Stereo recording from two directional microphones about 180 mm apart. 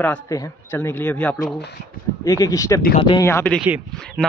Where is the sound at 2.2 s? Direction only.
20° left (ahead or behind).